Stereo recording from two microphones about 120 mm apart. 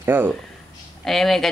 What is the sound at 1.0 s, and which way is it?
Speech, centre (ahead or behind).